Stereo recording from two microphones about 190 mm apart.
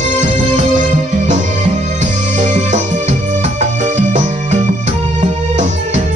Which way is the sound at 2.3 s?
40° right (ahead or behind).